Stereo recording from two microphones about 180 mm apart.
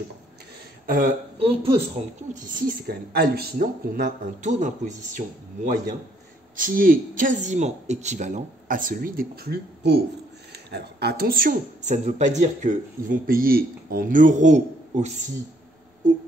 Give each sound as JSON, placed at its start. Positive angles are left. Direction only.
{"t": 0.8, "sound": "speech", "side_deg": -45}
{"t": 1.4, "sound": "speech", "side_deg": -30}
{"t": 2.4, "sound": "a woman's voice", "side_deg": -50}
{"t": 6.5, "sound": "a woman's voice", "side_deg": -50}